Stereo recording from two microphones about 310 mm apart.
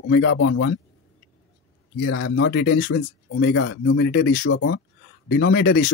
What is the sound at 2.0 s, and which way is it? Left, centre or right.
Speech, left.